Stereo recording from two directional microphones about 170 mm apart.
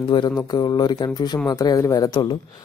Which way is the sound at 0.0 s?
30° left (ahead or behind).